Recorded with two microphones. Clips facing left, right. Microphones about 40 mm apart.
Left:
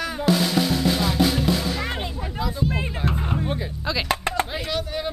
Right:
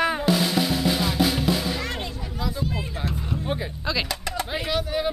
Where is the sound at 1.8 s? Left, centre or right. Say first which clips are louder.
Left 2 dB; centre.